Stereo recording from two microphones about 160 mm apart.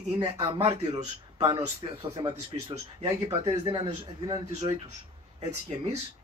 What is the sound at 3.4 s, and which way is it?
Speech, 35° right (ahead or behind).